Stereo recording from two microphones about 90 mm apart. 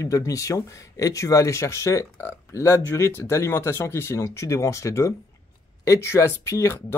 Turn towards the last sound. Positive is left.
turn(degrees=30)  # may be behind; listen again after turning